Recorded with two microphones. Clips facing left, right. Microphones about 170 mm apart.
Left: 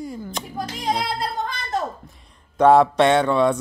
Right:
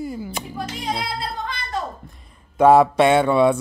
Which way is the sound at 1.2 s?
45° left (ahead or behind).